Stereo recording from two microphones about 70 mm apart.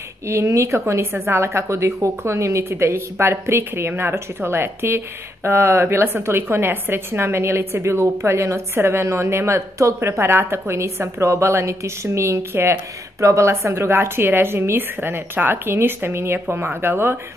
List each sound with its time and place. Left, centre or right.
0.3 s a woman's voice: right